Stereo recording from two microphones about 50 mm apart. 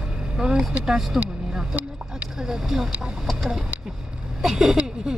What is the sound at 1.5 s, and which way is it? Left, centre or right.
Vehicle, centre.